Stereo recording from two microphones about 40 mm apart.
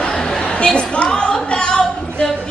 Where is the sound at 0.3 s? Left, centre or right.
Centre.